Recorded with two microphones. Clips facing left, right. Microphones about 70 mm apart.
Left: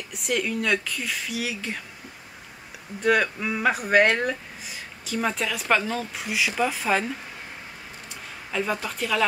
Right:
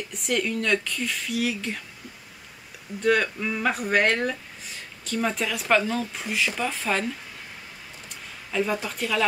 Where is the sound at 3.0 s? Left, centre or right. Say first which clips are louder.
Left 1 dB; centre.